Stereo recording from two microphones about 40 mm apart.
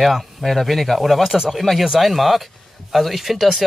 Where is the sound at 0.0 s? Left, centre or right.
Centre.